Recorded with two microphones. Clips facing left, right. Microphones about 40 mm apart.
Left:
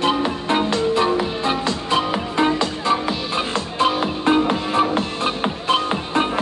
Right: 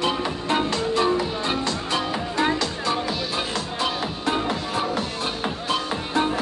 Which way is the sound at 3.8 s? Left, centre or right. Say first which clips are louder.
Left 10 dB; left.